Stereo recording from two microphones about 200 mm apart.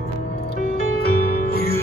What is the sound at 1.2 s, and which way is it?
Music, 45° left (ahead or behind).